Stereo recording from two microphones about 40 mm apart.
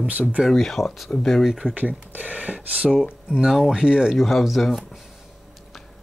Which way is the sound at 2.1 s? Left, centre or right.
Right.